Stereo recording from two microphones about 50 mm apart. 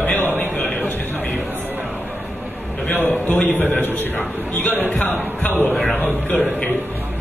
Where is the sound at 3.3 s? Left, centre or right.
Left.